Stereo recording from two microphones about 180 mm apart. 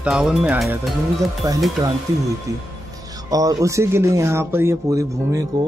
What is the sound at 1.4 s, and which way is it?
A man's voice, 15° right (ahead or behind).